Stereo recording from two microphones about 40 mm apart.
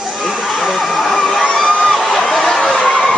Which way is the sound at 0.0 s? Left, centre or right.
Centre.